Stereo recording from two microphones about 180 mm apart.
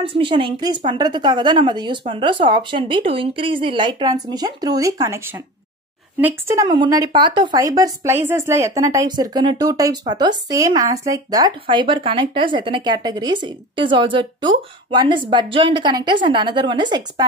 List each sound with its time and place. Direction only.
0.0 s speech: 30° right (ahead or behind)